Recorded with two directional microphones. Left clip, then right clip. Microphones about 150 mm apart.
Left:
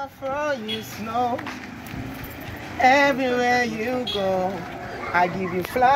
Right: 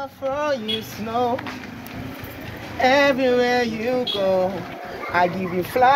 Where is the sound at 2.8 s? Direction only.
40° right (ahead or behind).